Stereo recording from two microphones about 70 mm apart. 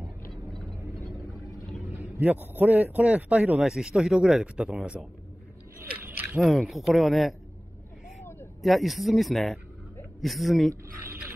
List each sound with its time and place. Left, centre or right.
0.3 s vehicle: centre
2.0 s a man's voice: right
3.5 s speech: centre
6.0 s a sound: right
6.4 s speech: centre
8.6 s speech: centre